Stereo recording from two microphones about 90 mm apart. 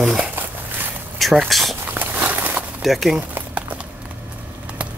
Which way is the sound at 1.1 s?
Centre (ahead or behind).